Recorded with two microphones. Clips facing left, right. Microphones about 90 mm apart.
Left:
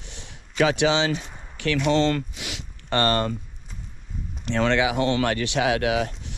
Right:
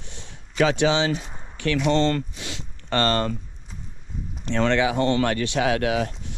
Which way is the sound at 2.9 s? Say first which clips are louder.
Even; 20° left (ahead or behind).